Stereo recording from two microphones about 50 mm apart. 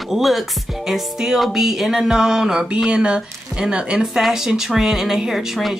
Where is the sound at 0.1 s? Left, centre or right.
Centre.